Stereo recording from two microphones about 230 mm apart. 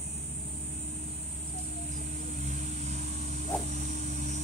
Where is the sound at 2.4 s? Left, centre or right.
Right.